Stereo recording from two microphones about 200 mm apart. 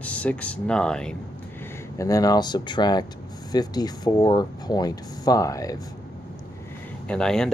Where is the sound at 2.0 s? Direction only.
15° left (ahead or behind).